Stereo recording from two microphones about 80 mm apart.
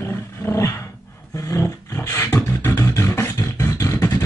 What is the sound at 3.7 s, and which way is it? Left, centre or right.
Vehicle, left.